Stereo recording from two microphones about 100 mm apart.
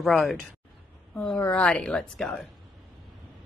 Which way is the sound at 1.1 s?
10° left (ahead or behind).